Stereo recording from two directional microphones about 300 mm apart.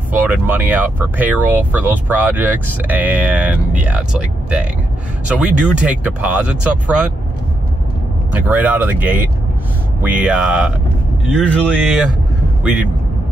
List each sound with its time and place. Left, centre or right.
0.1 s speech: centre
8.3 s speech: centre